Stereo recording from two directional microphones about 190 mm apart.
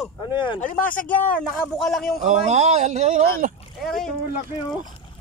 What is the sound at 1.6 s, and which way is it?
Speech, centre (ahead or behind).